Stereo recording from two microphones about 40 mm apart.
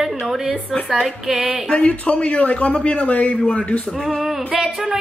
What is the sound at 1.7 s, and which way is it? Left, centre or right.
A man's voice, left.